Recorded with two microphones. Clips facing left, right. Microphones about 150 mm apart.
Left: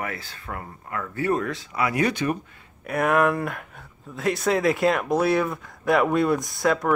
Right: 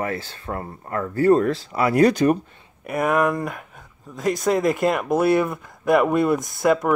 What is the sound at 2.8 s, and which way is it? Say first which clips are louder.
Speech: right 1 dB; centre (ahead or behind).